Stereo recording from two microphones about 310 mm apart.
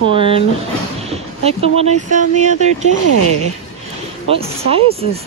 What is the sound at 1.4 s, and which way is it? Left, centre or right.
Speech, centre.